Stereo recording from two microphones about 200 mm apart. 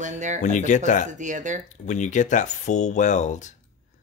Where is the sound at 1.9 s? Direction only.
40° left (ahead or behind).